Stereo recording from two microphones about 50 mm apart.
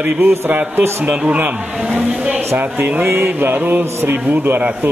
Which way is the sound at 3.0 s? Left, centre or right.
Right.